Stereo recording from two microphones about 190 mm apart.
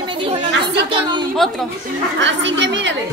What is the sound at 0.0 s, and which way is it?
Chatter, 25° right (ahead or behind).